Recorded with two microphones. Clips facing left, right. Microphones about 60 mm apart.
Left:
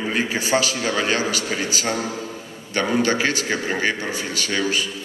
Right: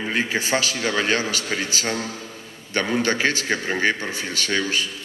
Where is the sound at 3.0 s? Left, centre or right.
Right.